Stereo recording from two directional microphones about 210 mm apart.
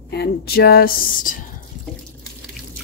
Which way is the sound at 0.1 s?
50° left (ahead or behind).